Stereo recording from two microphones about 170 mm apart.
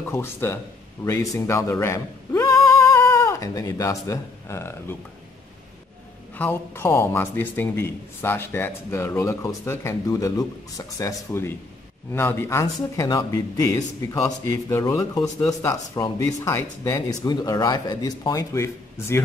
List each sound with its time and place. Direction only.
0.1 s a man's voice: 15° left (ahead or behind)
6.3 s a man's voice: 10° left (ahead or behind)